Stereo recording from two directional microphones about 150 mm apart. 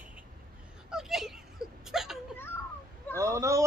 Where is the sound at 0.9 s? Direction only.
5° right (ahead or behind).